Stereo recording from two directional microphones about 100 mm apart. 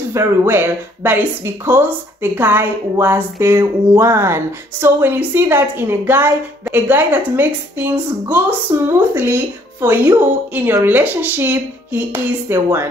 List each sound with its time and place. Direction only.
0.1 s speech: 25° right (ahead or behind)